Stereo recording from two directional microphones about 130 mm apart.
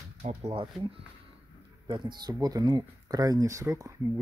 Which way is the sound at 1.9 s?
35° right (ahead or behind).